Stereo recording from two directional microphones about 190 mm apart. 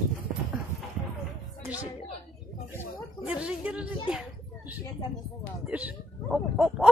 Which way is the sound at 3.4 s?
5° right (ahead or behind).